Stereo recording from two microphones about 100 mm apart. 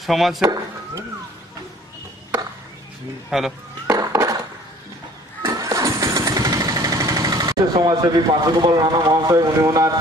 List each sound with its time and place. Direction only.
0.0 s speech: centre (ahead or behind)
3.3 s speech: 5° right (ahead or behind)
3.8 s a sound: 35° right (ahead or behind)
5.4 s engine starting: 35° right (ahead or behind)